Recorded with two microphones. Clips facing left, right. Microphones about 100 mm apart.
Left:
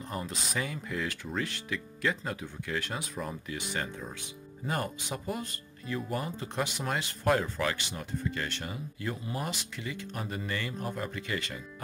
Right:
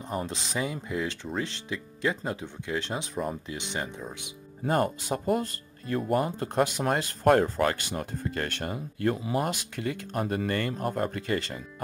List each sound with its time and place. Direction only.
0.3 s speech: 25° right (ahead or behind)
4.6 s speech: 40° right (ahead or behind)